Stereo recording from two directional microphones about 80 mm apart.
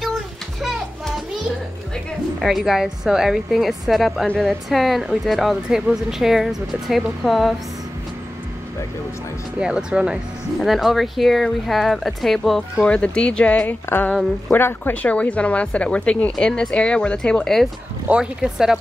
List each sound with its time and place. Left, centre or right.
0.6 s music: centre
2.4 s a woman's voice: centre
9.6 s a woman's voice: centre
13.8 s a woman's voice: left; by 17.6 s centre
18.0 s speech: centre